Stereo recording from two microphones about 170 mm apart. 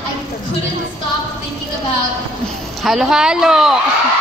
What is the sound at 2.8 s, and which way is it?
Speech, centre (ahead or behind).